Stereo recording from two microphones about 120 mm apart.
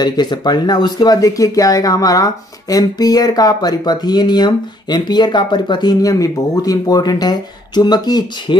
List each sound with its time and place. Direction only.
0.0 s speech: 35° left (ahead or behind)